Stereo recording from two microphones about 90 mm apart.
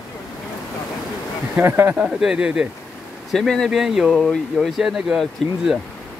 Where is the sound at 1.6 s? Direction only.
25° right (ahead or behind).